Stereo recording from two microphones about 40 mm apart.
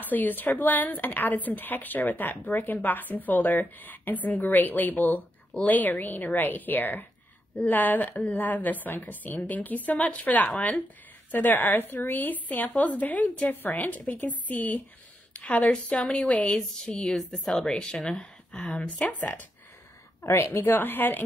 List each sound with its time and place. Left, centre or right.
0.0 s a woman's voice: left
15.3 s speech: left
16.5 s a woman's voice: centre
18.8 s speech: left
20.2 s a woman's voice: left